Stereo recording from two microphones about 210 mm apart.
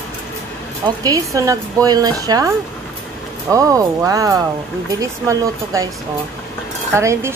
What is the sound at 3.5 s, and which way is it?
Speech, 15° right (ahead or behind).